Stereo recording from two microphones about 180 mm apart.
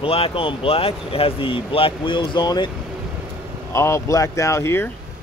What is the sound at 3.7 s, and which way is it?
Speech, 15° left (ahead or behind).